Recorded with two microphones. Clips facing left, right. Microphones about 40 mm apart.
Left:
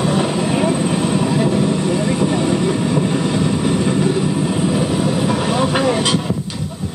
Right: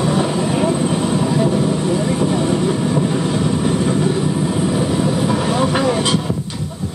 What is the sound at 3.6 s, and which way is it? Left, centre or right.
Vehicle, centre.